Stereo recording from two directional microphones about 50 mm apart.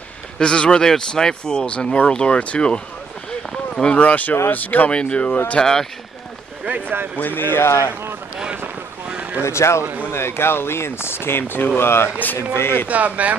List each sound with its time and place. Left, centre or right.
0.4 s speech: centre
3.8 s speech: left
5.6 s speech: centre
7.2 s speech: left
9.0 s vehicle: right
9.4 s speech: left
10.1 s speech: left
12.5 s speech: left
12.8 s speech: right